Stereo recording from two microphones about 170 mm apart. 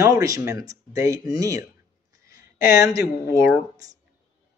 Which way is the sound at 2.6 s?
20° right (ahead or behind).